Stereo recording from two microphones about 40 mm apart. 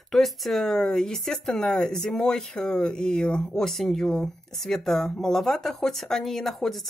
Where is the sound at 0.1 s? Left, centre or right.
Centre.